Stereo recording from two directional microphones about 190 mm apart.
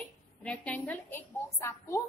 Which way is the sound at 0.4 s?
5° left (ahead or behind).